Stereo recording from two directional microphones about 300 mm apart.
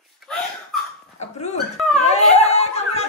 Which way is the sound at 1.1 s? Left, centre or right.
Left.